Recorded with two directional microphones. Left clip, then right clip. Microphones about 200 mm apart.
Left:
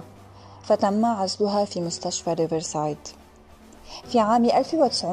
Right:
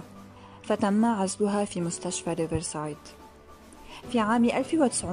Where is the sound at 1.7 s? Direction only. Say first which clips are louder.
Left 4 dB; 15° right (ahead or behind).